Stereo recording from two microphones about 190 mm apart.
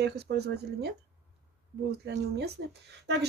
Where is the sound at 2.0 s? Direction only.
60° right (ahead or behind).